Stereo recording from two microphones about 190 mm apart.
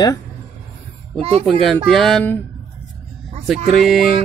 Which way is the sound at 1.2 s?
30° right (ahead or behind).